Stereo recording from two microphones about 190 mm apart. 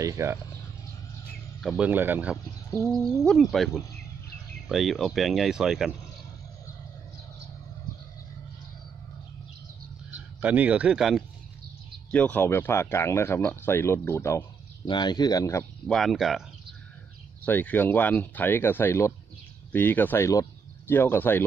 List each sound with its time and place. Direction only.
0.0 s speech: 15° right (ahead or behind)
1.6 s speech: centre (ahead or behind)
1.9 s speech: 10° right (ahead or behind)
2.3 s speech: 15° left (ahead or behind)
2.9 s speech: 5° left (ahead or behind)
10.4 s speech: 10° right (ahead or behind); by 15.6 s 15° left (ahead or behind)
15.9 s speech: centre (ahead or behind)